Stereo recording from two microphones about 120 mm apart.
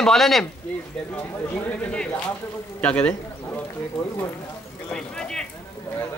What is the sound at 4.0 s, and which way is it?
Speech, 25° left (ahead or behind).